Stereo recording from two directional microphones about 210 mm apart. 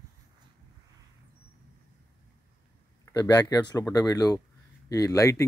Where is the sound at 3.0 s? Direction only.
15° left (ahead or behind).